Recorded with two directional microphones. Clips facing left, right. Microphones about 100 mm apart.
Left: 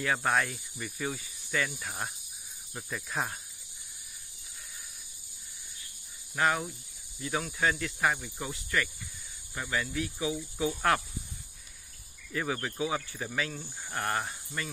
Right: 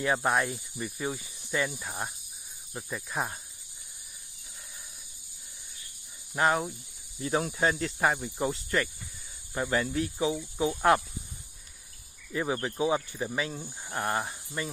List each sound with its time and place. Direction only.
0.0 s speech: 20° right (ahead or behind)
6.3 s speech: 30° right (ahead or behind)
10.6 s speech: 25° right (ahead or behind)
12.3 s speech: 20° right (ahead or behind)